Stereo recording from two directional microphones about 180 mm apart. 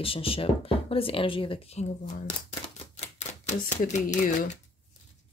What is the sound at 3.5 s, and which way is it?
Speech, 40° left (ahead or behind).